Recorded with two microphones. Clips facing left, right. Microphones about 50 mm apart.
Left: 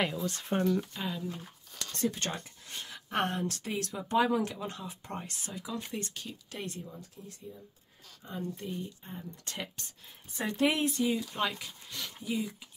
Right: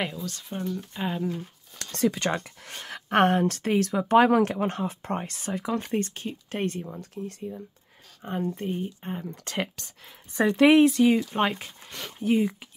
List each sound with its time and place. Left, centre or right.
0.2 s speech: left
0.9 s speech: right
1.8 s speech: right
8.2 s speech: right
8.5 s speech: right
9.1 s speech: right
10.8 s speech: right
11.3 s speech: right
12.2 s speech: right